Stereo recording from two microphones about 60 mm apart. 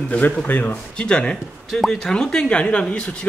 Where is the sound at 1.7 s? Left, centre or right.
Centre.